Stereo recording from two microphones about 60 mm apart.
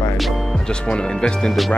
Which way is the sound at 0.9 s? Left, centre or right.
Centre.